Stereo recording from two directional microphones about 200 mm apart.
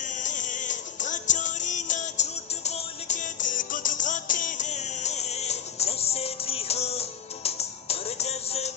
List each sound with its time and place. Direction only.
0.0 s music: 40° left (ahead or behind)